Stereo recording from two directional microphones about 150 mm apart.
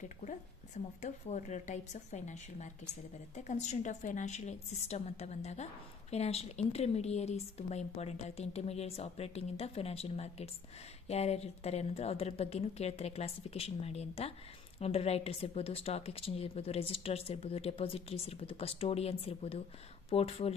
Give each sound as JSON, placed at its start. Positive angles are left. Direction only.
{"t": 1.0, "sound": "a woman's voice", "side_deg": 50}